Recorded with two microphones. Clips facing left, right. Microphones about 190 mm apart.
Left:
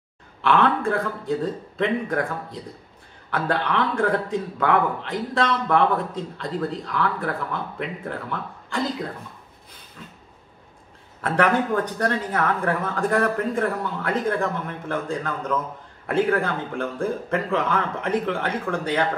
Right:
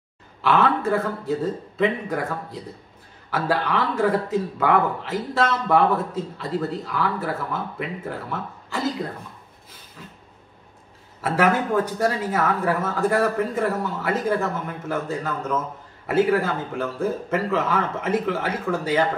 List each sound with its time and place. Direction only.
0.4 s a man's voice: centre (ahead or behind)
11.1 s a man's voice: 5° right (ahead or behind)